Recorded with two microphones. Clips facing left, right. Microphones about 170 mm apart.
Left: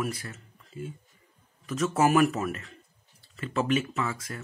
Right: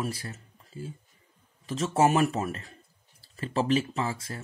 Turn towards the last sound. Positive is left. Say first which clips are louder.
# even
turn(degrees=-30)  # may be behind; listen again after turning